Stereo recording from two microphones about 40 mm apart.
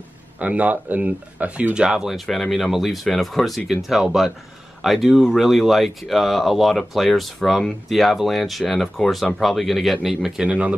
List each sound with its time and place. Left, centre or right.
0.4 s speech: right
1.8 s speech: centre
2.3 s speech: centre
10.4 s speech: right